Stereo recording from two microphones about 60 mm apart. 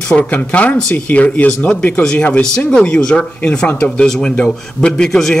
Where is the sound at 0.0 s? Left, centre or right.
Centre.